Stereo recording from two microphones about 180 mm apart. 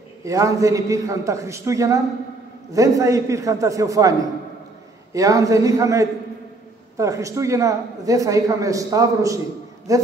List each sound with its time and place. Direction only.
0.2 s a man's voice: 15° right (ahead or behind)
5.1 s a man's voice: 20° right (ahead or behind)